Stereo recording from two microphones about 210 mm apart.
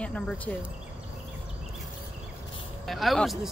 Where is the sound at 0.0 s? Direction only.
5° left (ahead or behind).